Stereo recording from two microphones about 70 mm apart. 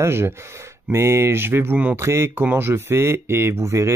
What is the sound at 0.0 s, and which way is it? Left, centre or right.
Speech, right.